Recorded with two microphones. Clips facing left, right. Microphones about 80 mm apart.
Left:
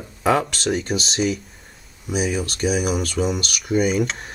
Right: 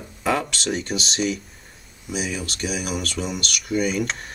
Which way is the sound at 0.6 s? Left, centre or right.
Centre.